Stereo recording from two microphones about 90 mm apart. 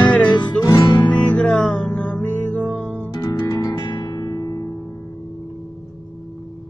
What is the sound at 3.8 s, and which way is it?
Music, 55° left (ahead or behind).